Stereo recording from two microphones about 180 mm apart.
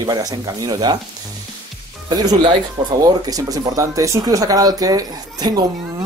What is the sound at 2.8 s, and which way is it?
Speech, 30° right (ahead or behind).